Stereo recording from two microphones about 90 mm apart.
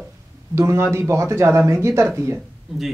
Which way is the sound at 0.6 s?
30° right (ahead or behind).